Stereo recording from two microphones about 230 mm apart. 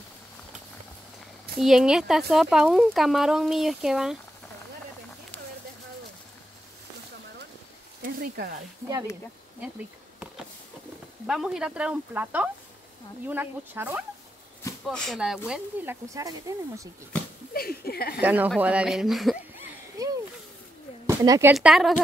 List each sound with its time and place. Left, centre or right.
1.6 s speech: centre
8.0 s a sound: right
11.2 s speech: centre
14.6 s speech: centre
17.6 s speech: left
18.2 s speech: centre
20.0 s a sound: centre
21.1 s speech: centre
21.5 s speech: centre